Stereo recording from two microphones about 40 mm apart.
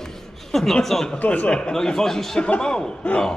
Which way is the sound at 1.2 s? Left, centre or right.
Left.